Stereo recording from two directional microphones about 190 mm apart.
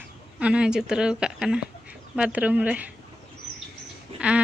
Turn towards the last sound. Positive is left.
turn(degrees=-5)  # may be behind; listen again after turning